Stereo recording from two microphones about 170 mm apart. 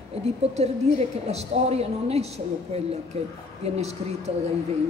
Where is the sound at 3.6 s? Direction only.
40° right (ahead or behind).